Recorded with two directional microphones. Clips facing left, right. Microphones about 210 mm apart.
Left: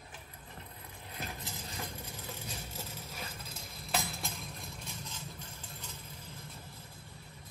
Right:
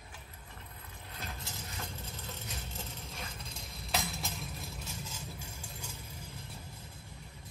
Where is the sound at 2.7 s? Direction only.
5° left (ahead or behind).